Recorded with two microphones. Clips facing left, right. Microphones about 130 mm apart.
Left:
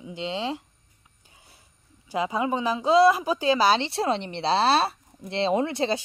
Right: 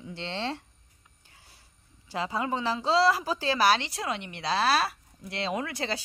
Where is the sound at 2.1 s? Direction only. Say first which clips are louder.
Left 4 dB; 20° left (ahead or behind).